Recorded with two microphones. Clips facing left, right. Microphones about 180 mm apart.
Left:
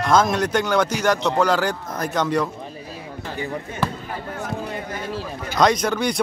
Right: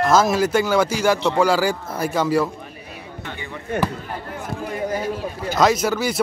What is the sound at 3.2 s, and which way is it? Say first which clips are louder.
Basketball bounce: left 6 dB; 40° left (ahead or behind).